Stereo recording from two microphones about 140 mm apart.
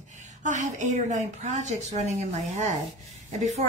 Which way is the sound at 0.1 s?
60° right (ahead or behind).